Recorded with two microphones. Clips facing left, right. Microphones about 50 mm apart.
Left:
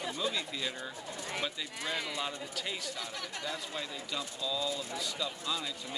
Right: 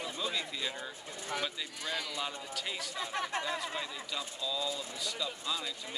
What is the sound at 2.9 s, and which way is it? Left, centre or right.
Speech, right.